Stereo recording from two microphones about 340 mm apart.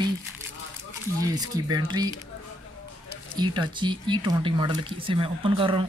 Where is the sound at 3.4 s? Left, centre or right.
Centre.